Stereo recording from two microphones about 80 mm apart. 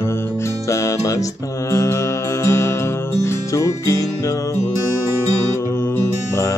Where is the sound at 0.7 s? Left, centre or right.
Left.